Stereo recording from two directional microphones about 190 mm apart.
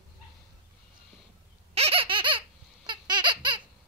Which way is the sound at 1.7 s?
30° right (ahead or behind).